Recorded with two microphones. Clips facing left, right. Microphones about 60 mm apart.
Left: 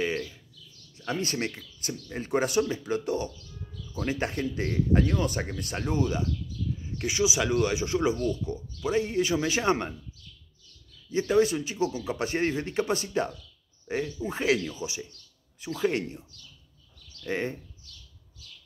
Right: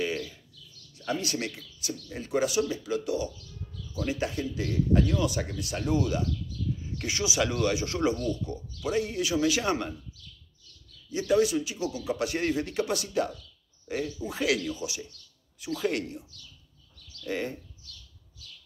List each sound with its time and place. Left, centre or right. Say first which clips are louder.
0.0 s bird: left 1 dB; left
1.2 s a man's voice: left 2 dB; left
4.3 s a man's voice: left 2 dB; left
11.1 s a man's voice: left 1 dB; left